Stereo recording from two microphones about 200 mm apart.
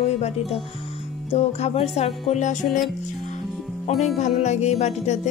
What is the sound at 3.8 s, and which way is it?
Music, 35° left (ahead or behind).